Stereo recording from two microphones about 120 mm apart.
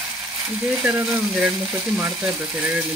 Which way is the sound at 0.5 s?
10° right (ahead or behind).